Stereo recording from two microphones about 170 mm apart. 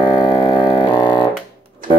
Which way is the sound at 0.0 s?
25° left (ahead or behind).